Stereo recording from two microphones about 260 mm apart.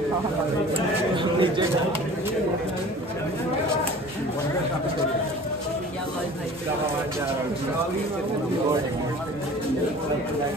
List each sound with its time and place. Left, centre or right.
0.7 s speech: centre